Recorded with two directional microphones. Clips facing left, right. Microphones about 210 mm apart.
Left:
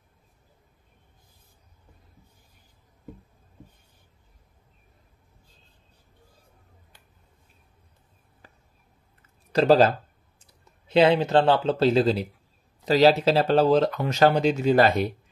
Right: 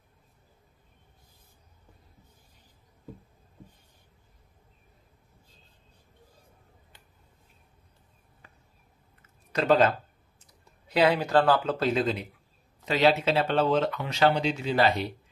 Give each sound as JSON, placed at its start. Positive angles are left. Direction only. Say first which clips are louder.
{"t": 9.5, "sound": "speech", "louder": "left 4 dB", "side_deg": 35}